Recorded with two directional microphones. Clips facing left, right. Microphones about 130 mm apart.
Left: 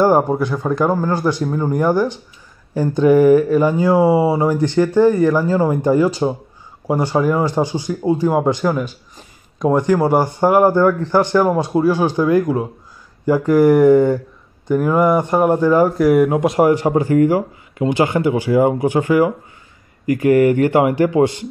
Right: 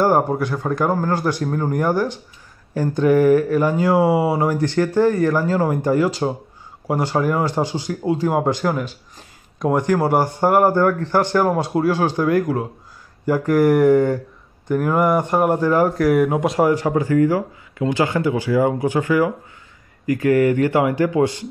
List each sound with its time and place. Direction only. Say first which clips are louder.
0.0 s a man's voice: left 3 dB; centre (ahead or behind)
7.5 s speech: left 3 dB; 15° left (ahead or behind)
8.3 s speech: left 1 dB; 5° right (ahead or behind)
9.8 s a man's voice: left 3 dB; 5° right (ahead or behind)
13.3 s a man's voice: left 3 dB; centre (ahead or behind)
16.5 s speech: left 4 dB; 20° left (ahead or behind)